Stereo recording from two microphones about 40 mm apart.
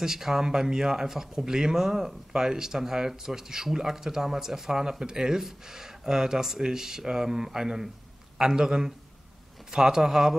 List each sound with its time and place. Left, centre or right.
0.0 s speech: centre